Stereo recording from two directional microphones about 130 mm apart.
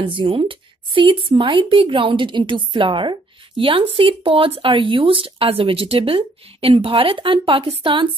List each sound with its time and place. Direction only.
0.1 s speech: 45° right (ahead or behind)